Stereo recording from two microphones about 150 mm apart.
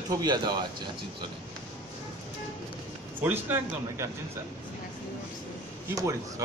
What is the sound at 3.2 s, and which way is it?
Speech, 15° right (ahead or behind).